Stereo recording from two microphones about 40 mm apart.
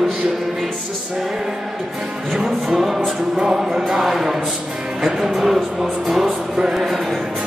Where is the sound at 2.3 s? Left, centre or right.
Centre.